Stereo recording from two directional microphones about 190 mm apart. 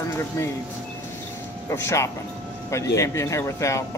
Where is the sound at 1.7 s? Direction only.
15° left (ahead or behind).